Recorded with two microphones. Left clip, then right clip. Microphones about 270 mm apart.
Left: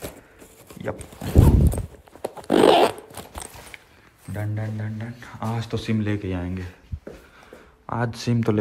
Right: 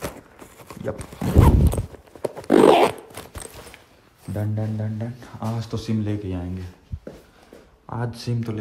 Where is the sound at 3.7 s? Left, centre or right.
Right.